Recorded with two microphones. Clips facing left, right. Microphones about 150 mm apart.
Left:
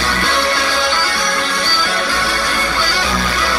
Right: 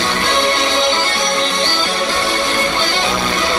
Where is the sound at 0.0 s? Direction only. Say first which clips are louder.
Right 1 dB; 20° right (ahead or behind).